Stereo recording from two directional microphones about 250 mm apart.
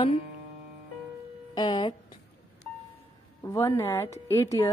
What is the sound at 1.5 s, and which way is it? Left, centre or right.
Speech, centre.